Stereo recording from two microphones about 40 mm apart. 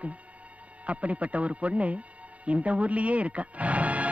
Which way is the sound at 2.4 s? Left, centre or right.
Right.